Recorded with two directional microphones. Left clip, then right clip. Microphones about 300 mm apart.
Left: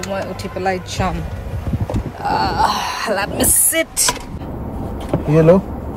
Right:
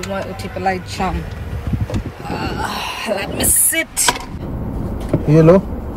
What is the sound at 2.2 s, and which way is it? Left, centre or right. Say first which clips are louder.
Wail: left 9 dB; centre.